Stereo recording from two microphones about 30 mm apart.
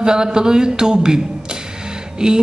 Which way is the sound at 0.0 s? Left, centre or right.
Right.